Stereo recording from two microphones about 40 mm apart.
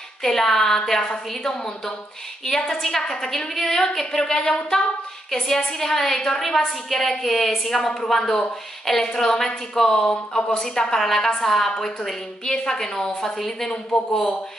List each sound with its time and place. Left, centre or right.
0.2 s a woman's voice: centre
10.0 s speech: left
10.6 s a woman's voice: centre
12.4 s a woman's voice: centre